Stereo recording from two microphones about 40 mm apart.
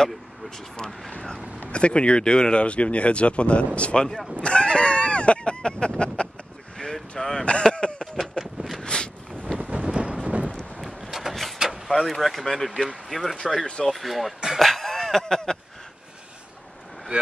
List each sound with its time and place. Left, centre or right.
1.7 s speech: left
6.8 s vehicle: centre
7.4 s speech: left
8.2 s a sound: centre
8.8 s a sound: left
9.6 s wind noise: right
10.2 s a sound: right
10.8 s vehicle: centre
11.9 s speech: centre
13.4 s speech: centre
13.8 s speech: centre
14.6 s a sound: centre